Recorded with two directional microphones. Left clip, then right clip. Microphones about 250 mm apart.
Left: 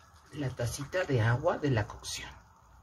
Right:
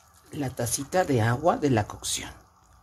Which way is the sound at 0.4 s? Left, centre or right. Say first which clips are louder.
Right 6 dB; right.